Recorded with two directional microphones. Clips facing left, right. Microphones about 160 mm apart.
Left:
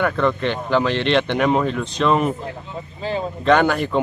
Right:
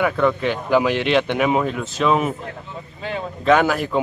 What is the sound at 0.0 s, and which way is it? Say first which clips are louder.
Speech: right 1 dB; 5° right (ahead or behind).